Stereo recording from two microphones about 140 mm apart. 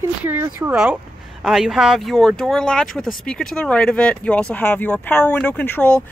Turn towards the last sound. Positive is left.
turn(degrees=10)  # may be behind; listen again after turning